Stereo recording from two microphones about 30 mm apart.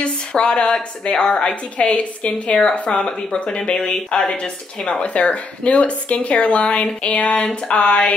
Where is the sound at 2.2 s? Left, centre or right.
Left.